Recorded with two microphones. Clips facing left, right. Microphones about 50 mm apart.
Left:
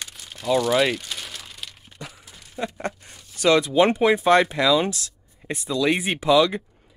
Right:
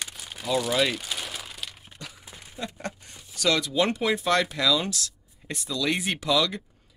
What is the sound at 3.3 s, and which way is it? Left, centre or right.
Speech, left.